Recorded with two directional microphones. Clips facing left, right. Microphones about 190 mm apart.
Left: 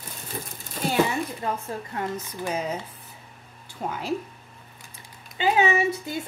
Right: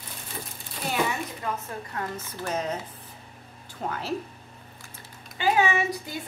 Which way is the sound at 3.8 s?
10° left (ahead or behind).